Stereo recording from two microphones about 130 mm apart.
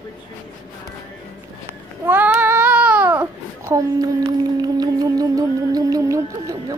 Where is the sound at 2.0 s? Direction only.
15° right (ahead or behind).